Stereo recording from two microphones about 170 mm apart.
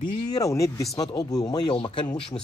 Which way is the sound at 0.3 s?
20° left (ahead or behind).